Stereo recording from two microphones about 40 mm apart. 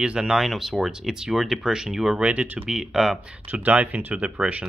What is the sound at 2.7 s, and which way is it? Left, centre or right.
Speech, centre.